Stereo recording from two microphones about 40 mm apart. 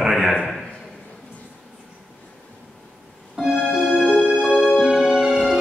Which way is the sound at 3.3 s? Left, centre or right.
Centre.